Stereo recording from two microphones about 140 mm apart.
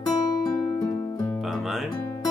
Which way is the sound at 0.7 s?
20° left (ahead or behind).